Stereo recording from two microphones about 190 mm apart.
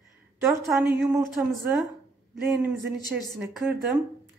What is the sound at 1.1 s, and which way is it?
Speech, 15° right (ahead or behind).